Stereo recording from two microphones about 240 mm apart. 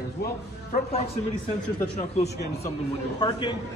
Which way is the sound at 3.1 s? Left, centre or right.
Centre.